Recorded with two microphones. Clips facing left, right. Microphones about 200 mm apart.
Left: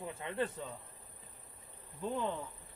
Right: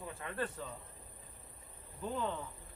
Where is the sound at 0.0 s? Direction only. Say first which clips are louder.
Left 3 dB; 25° left (ahead or behind).